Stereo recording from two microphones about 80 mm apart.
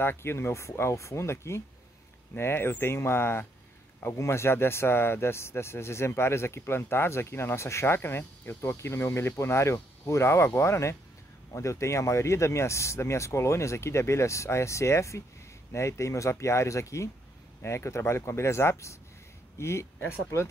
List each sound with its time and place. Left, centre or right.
0.0 s speech: left